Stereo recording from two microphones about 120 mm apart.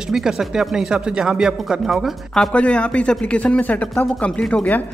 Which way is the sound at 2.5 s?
10° left (ahead or behind).